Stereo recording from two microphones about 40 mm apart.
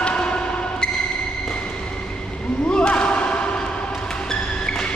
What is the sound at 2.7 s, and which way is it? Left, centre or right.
Slam, left.